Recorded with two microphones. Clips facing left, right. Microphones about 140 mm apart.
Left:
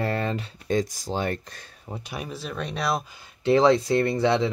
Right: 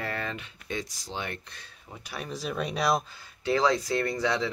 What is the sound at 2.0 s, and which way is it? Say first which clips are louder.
Speech: left 2 dB; 20° left (ahead or behind).